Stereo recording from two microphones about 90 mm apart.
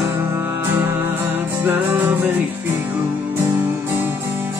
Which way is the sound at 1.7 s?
20° right (ahead or behind).